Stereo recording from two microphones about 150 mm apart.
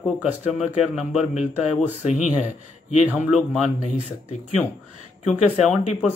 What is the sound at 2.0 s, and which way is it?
Speech, 50° left (ahead or behind).